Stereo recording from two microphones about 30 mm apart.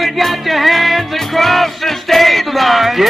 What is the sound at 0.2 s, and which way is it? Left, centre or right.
Music, centre.